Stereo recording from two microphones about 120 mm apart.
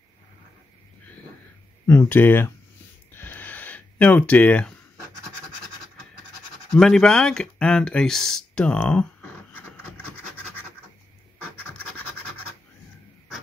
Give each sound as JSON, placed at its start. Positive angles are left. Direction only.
{"t": 1.9, "sound": "speech", "side_deg": 20}
{"t": 3.1, "sound": "a sound", "side_deg": 15}
{"t": 6.7, "sound": "speech", "side_deg": 5}